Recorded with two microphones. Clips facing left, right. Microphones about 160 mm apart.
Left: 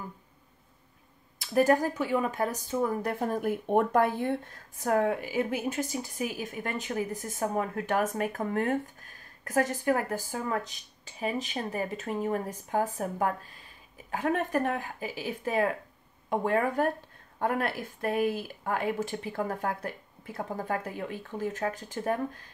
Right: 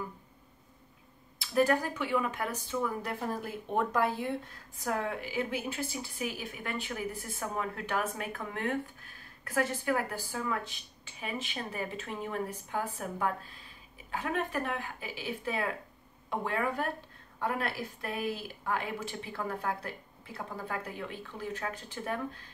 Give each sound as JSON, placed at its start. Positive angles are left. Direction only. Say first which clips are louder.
{"t": 1.4, "sound": "a woman's voice", "louder": "left 4 dB", "side_deg": 45}